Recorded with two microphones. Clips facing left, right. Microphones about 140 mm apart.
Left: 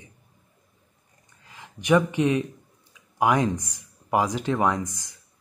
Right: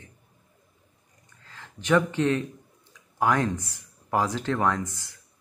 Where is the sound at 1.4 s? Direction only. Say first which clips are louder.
Left 2 dB; 15° left (ahead or behind).